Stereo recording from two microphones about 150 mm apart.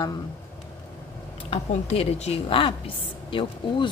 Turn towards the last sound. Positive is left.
turn(degrees=35)  # may be behind; listen again after turning